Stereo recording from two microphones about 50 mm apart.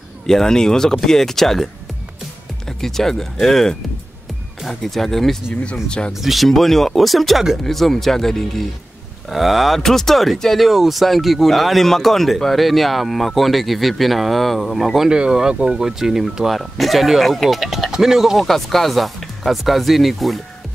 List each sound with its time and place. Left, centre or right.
0.3 s speech: centre
2.8 s speech: centre
5.7 s speech: centre
6.2 s speech: centre
15.0 s speech: centre
18.4 s speech: centre